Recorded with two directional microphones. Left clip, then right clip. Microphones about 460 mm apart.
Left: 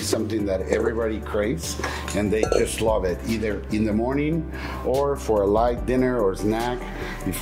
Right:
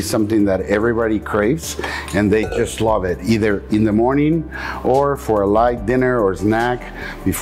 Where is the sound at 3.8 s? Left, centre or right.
Right.